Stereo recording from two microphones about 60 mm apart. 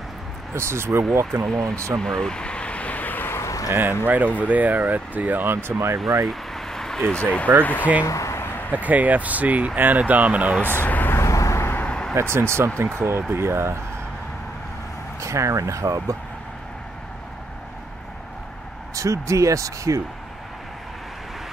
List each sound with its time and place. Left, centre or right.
0.6 s speech: right
2.0 s vehicle: centre; by 3.3 s left
3.3 s a sound: left
4.0 s speech: right
6.2 s a sound: centre
7.6 s speech: left
8.0 s a sound: left
8.7 s speech: right
10.6 s speech: left
11.1 s vehicle: left
12.2 s speech: right
15.1 s speech: right
18.9 s speech: right